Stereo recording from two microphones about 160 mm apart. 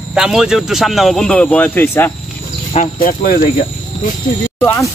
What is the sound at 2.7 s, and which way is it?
Speech, 55° left (ahead or behind).